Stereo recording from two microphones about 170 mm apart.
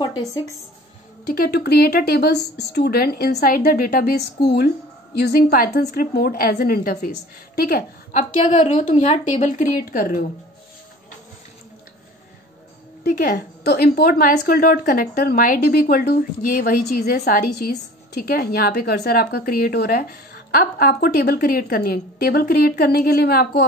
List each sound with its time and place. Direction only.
0.0 s a woman's voice: 25° left (ahead or behind)
1.2 s speech: 65° left (ahead or behind)
8.5 s a woman's voice: 35° left (ahead or behind); by 10.1 s 60° left (ahead or behind)
13.0 s speech: 65° left (ahead or behind)